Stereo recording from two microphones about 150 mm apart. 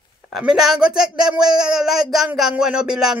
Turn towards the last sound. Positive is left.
turn(degrees=-5)  # may be behind; listen again after turning